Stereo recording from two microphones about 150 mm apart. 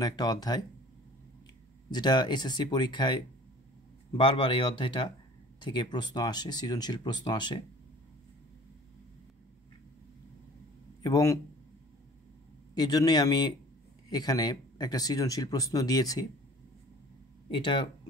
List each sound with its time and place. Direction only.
0.0 s speech: 25° left (ahead or behind)
1.9 s speech: 30° left (ahead or behind)
11.0 s speech: 25° left (ahead or behind)
12.7 s speech: 25° left (ahead or behind)
17.5 s speech: 35° left (ahead or behind)